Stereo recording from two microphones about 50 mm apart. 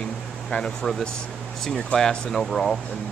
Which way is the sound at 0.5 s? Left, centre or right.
Centre.